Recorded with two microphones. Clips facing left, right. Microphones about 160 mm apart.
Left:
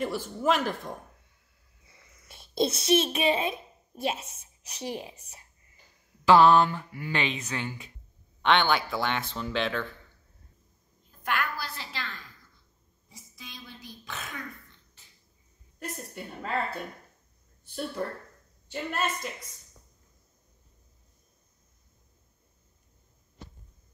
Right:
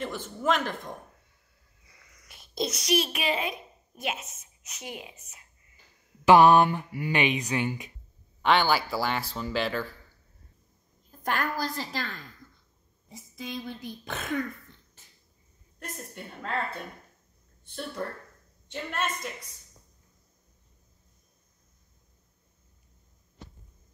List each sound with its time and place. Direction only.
0.0 s a man's voice: 10° left (ahead or behind)
1.9 s a child's voice: 25° left (ahead or behind)
6.2 s speech: 15° right (ahead or behind)
11.1 s a woman's voice: 40° right (ahead or behind)
13.4 s speech: 50° right (ahead or behind)
15.8 s speech: 5° left (ahead or behind)
18.7 s speech: 5° left (ahead or behind)